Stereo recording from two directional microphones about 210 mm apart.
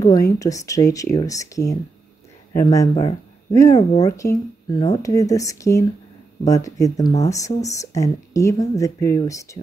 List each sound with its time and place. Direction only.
0.0 s speech: 15° left (ahead or behind)